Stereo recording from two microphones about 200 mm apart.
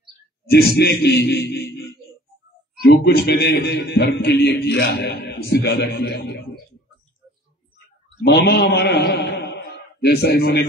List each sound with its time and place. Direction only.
0.5 s a man's voice: 55° left (ahead or behind)
2.8 s a man's voice: 50° left (ahead or behind)
8.3 s a man's voice: 55° left (ahead or behind)